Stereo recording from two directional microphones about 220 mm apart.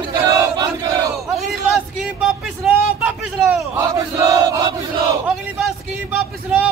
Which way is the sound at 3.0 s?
5° right (ahead or behind).